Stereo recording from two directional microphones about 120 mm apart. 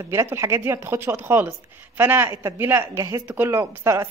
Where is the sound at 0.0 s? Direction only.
25° right (ahead or behind).